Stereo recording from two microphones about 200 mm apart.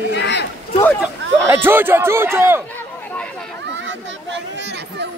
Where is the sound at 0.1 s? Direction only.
60° left (ahead or behind).